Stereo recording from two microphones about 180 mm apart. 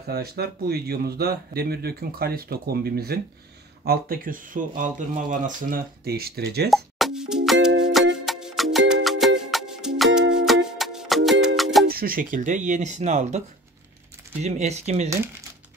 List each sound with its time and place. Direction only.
0.1 s speech: 60° right (ahead or behind)
6.7 s plop: centre (ahead or behind)
7.8 s music: centre (ahead or behind)
11.9 s speech: 55° right (ahead or behind)
14.4 s speech: 40° right (ahead or behind)